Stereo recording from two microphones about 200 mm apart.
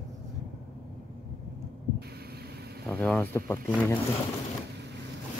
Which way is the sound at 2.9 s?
5° left (ahead or behind).